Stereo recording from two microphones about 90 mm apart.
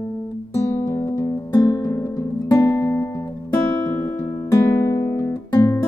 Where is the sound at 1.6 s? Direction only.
50° left (ahead or behind).